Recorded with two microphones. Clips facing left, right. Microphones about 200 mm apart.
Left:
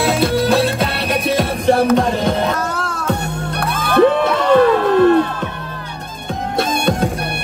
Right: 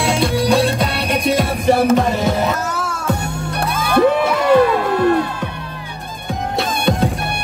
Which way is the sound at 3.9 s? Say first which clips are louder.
Left 2 dB; 10° right (ahead or behind).